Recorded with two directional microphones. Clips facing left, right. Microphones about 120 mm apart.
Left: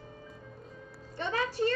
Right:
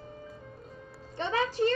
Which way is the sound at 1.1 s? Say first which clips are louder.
Right 3 dB; 25° right (ahead or behind).